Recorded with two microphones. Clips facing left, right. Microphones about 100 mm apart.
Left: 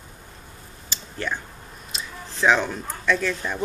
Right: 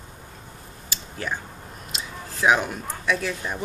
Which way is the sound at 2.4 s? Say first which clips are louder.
Left 1 dB; 10° right (ahead or behind).